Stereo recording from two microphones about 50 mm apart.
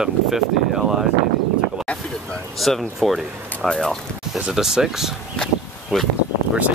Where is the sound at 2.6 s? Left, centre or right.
Centre.